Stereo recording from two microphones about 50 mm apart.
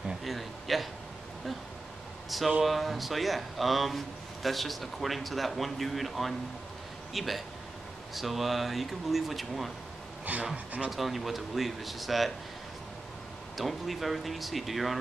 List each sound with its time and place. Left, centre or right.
0.2 s a sound: centre
2.2 s air conditioning: centre
2.6 s a man's voice: centre
10.3 s speech: right
10.9 s a man's voice: centre
13.6 s a man's voice: centre